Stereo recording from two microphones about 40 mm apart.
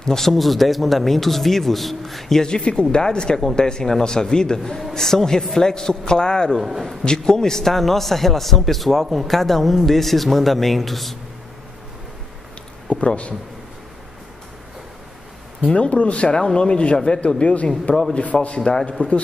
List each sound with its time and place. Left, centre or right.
0.0 s speech: centre
2.4 s a man's voice: centre
12.8 s speech: left
15.7 s a man's voice: left